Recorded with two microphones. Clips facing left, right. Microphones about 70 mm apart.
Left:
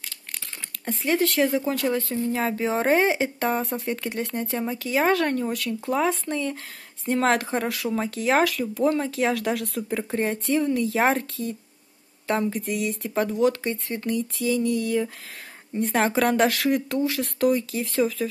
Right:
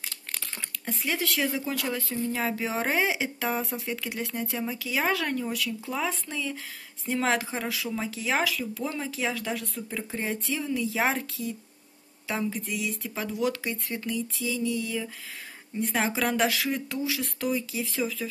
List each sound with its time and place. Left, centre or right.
0.8 s a woman's voice: left
10.2 s a woman's voice: left
12.6 s a woman's voice: left
14.0 s a woman's voice: left